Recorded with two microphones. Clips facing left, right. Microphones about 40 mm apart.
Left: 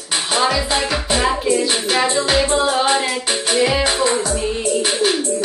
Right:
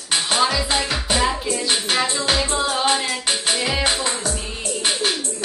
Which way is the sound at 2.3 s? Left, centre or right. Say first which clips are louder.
Left 5 dB; centre.